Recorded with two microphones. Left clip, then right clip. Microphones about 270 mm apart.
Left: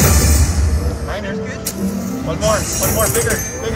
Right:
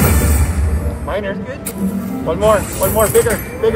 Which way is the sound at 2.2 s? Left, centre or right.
Right.